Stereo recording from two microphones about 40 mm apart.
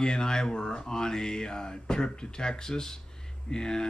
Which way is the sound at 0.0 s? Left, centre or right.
Centre.